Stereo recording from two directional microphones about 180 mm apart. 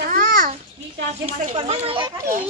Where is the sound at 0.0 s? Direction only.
50° right (ahead or behind).